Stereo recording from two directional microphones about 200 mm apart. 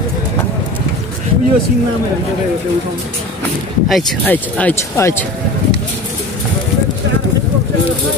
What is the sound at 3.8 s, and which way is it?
Speech, 5° left (ahead or behind).